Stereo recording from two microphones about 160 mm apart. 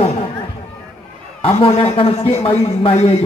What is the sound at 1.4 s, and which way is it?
A man's voice, 40° left (ahead or behind).